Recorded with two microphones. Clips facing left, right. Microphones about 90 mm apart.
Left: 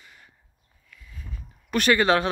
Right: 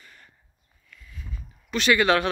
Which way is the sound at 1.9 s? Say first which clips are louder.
Even; 30° left (ahead or behind).